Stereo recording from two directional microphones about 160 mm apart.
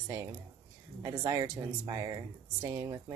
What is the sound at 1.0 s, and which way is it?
Speech, 20° right (ahead or behind).